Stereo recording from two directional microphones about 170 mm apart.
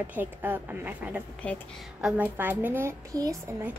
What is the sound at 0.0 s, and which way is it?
Speech, 10° right (ahead or behind).